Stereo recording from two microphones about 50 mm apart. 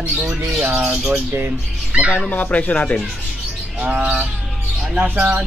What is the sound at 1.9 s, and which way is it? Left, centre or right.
Music, right.